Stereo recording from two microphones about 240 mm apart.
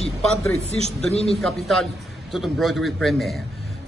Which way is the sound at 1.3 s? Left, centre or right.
Centre.